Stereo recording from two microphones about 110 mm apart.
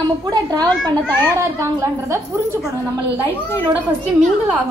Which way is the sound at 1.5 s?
25° right (ahead or behind).